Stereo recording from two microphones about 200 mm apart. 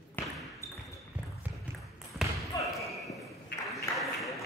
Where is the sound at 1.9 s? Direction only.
Centre (ahead or behind).